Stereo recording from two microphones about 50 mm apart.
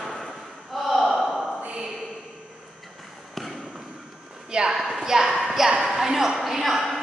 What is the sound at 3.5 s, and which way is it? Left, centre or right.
Basketball bounce, centre.